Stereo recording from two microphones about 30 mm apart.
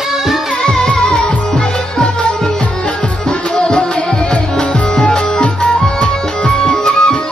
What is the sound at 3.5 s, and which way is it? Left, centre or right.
Music, left.